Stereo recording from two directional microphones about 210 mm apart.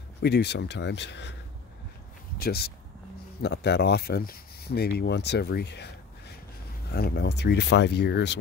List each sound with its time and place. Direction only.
0.2 s speech: 55° left (ahead or behind)
2.3 s speech: 45° left (ahead or behind)